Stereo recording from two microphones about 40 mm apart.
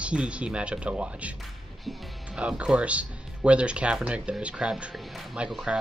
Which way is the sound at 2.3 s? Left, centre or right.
Right.